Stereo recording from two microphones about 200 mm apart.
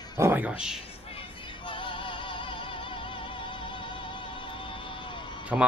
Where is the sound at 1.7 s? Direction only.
25° left (ahead or behind).